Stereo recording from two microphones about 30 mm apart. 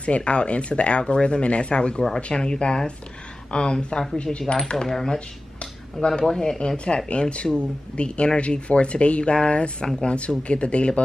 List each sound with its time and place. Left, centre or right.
0.0 s speech: left
4.8 s speech: centre
5.6 s a sound: left
6.2 s speech: left
7.1 s speech: left